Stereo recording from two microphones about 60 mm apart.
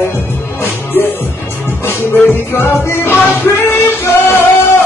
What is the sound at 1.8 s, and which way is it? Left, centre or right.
Music, left.